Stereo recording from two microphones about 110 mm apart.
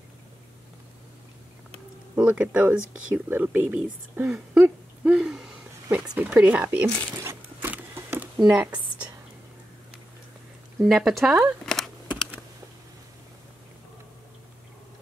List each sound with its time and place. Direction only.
2.1 s speech: 10° right (ahead or behind)
7.2 s a sound: 20° right (ahead or behind)
8.5 s a woman's voice: 15° right (ahead or behind)
10.8 s speech: 5° right (ahead or behind)
11.6 s typing: 5° left (ahead or behind)